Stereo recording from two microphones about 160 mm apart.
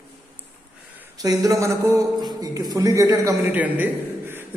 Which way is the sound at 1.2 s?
20° right (ahead or behind).